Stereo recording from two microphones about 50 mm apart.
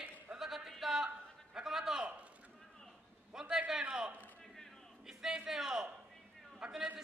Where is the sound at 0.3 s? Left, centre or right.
Centre.